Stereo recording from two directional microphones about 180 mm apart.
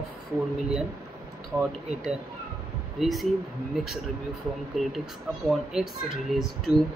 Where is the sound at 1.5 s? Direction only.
15° right (ahead or behind).